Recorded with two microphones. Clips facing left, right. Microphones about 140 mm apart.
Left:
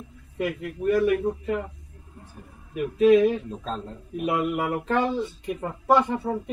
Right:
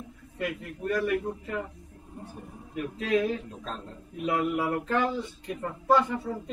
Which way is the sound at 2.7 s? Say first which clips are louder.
Left 10 dB; 15° left (ahead or behind).